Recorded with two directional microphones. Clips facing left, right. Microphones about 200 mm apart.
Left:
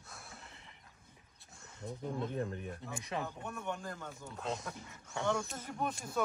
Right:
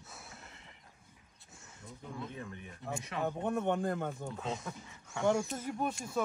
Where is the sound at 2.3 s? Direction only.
45° left (ahead or behind).